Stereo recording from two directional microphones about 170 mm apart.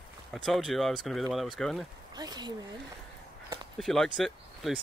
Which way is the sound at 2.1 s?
25° right (ahead or behind).